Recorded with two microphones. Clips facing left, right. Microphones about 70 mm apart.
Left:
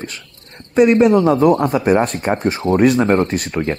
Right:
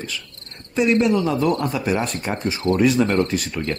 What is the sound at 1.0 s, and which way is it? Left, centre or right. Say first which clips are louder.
Cricket: left 7 dB; left.